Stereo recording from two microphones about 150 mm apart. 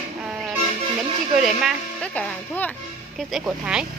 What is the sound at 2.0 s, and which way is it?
Speech, 10° left (ahead or behind).